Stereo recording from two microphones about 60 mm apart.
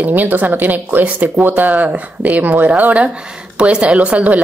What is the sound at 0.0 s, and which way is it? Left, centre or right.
A woman's voice, right.